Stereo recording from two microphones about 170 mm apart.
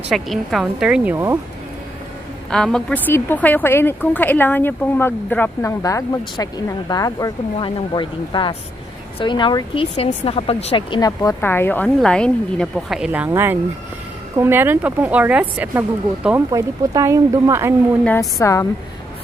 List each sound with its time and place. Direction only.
0.1 s a woman's voice: centre (ahead or behind); by 1.4 s 15° right (ahead or behind)
2.5 s speech: 5° left (ahead or behind); by 17.7 s 15° right (ahead or behind)
18.4 s speech: 15° left (ahead or behind)